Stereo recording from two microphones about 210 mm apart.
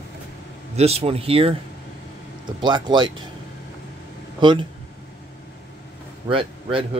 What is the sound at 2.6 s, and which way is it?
Speech, 20° right (ahead or behind).